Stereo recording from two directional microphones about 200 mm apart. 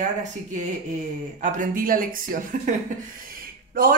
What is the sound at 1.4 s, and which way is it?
Speech, 40° right (ahead or behind).